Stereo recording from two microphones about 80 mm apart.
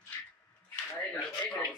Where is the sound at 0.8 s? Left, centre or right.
Left.